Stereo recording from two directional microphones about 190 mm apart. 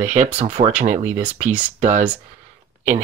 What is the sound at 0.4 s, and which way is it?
Speech, 35° right (ahead or behind).